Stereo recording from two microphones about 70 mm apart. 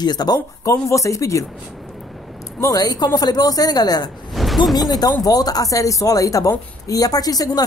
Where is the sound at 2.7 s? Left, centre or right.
Left.